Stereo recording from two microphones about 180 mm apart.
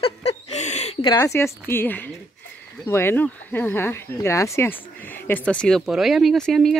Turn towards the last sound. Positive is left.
turn(degrees=0)  # may be behind; listen again after turning